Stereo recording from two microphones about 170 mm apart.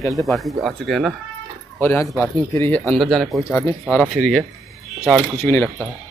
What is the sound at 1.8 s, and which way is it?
Speech, 15° left (ahead or behind).